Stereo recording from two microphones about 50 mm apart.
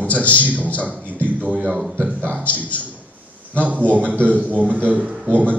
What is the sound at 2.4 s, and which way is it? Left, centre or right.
Speech, left.